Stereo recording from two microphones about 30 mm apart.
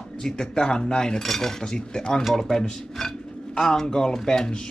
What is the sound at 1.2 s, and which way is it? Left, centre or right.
A man's voice, centre.